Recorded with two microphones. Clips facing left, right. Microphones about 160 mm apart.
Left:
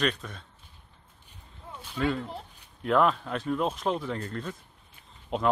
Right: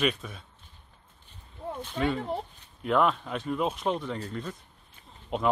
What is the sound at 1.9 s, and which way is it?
Speech, 5° right (ahead or behind).